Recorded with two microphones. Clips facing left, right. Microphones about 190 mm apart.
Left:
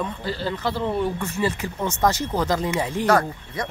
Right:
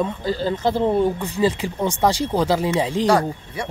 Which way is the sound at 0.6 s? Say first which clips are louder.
Right 7 dB; 45° right (ahead or behind).